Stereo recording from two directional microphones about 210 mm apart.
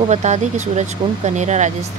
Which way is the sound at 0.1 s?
35° right (ahead or behind).